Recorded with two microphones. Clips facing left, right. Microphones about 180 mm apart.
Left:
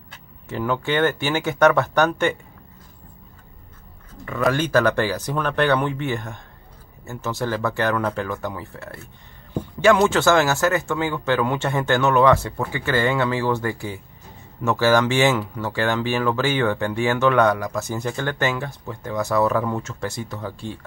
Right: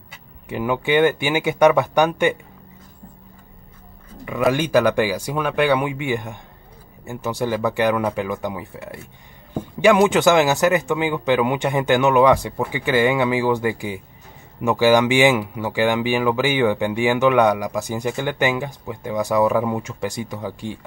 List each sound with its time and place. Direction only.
0.1 s speech: 15° right (ahead or behind)
4.5 s speech: 15° right (ahead or behind)